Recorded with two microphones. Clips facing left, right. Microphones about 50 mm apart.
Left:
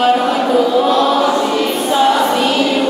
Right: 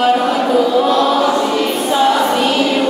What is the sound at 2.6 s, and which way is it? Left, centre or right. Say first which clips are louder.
Music: even; right.